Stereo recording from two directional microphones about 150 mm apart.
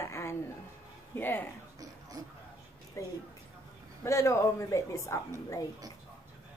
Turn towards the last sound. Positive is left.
turn(degrees=20)  # may be behind; listen again after turning